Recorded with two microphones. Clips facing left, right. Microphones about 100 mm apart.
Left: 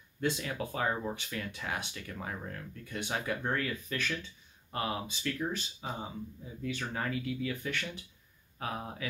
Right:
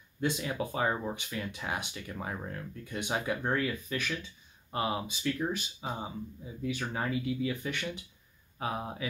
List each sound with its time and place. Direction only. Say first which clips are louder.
0.2 s speech: right 2 dB; 20° right (ahead or behind)